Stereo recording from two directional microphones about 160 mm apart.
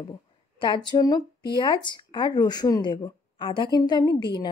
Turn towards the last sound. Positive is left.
turn(degrees=30)  # may be behind; listen again after turning